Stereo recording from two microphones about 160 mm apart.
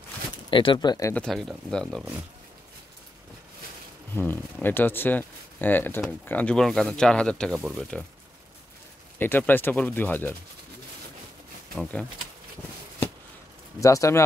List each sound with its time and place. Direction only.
0.5 s speech: 30° left (ahead or behind)
1.1 s speech: 5° left (ahead or behind)
4.1 s speech: 10° left (ahead or behind)
9.2 s speech: 10° left (ahead or behind)
11.7 s speech: 5° left (ahead or behind)
13.7 s speech: 20° left (ahead or behind)